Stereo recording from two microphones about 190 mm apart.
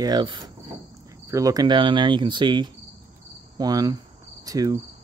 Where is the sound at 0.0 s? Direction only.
20° right (ahead or behind).